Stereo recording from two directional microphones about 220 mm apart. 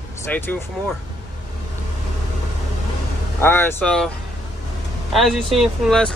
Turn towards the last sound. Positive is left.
turn(degrees=0)  # may be behind; listen again after turning